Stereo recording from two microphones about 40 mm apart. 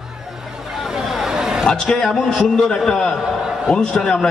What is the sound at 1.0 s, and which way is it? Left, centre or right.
Chatter, centre.